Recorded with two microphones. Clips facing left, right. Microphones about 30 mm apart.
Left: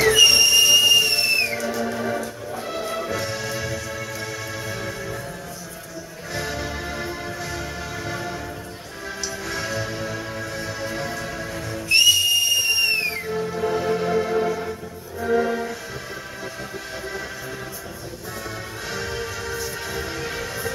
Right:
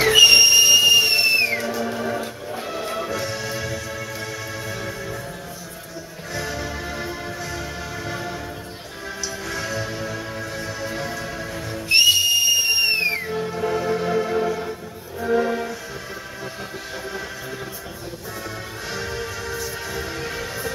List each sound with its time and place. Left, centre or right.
0.0 s whistle: right
0.3 s whistle: right
0.6 s whistle: centre
1.2 s music: centre
3.3 s music: centre
6.3 s music: centre
6.7 s music: centre
9.5 s music: left
9.8 s music: centre
11.9 s whistle: centre
13.7 s music: centre
18.9 s music: centre
19.1 s music: centre